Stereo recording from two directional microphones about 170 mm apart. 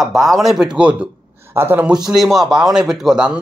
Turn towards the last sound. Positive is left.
turn(degrees=-5)  # may be behind; listen again after turning